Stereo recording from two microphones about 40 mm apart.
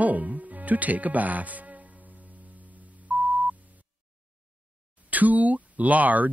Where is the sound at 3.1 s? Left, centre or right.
Right.